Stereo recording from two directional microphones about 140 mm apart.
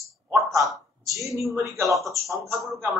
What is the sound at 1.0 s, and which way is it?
Speech, 20° right (ahead or behind).